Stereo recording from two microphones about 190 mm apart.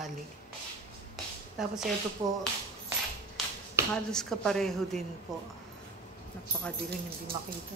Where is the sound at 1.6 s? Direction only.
Centre (ahead or behind).